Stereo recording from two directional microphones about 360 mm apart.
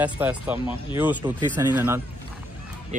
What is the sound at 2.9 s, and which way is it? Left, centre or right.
Speech, right.